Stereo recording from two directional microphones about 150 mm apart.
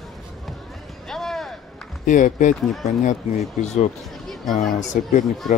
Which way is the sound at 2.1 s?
55° left (ahead or behind).